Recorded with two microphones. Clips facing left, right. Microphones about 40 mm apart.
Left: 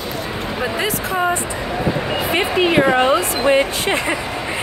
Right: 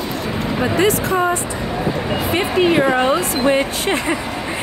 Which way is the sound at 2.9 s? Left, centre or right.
Left.